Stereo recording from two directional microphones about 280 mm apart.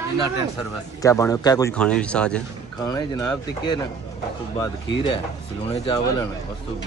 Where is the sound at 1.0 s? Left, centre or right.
Centre.